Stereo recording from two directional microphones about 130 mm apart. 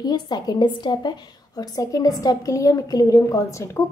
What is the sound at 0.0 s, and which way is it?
A woman's voice, 30° left (ahead or behind).